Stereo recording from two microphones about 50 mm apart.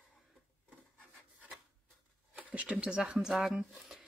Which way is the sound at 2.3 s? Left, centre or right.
Right.